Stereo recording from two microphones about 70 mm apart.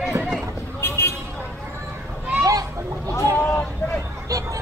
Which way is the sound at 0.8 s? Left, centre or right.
Left.